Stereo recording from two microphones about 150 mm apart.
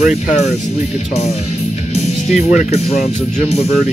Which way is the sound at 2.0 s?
45° left (ahead or behind).